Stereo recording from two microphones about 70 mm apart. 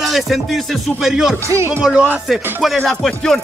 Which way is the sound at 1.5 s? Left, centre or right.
Right.